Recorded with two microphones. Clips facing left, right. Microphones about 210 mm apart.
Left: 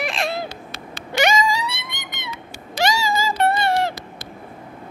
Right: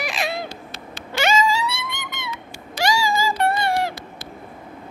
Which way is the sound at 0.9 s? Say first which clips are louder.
Left 1 dB; 15° left (ahead or behind).